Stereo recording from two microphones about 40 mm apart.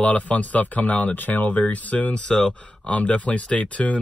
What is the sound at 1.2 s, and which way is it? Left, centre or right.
Speech, left.